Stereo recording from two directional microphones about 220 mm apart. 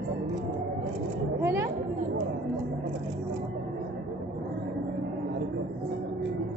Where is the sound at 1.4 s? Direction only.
10° right (ahead or behind).